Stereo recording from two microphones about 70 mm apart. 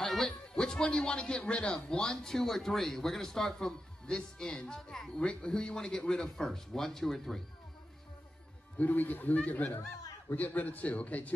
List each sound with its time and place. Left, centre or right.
0.0 s speech: centre
8.7 s a man's voice: left